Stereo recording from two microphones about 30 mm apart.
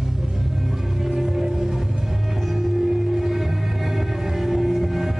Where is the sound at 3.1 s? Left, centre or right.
Centre.